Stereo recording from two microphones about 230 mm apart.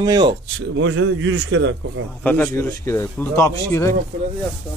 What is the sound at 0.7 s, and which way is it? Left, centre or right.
A man's voice, right.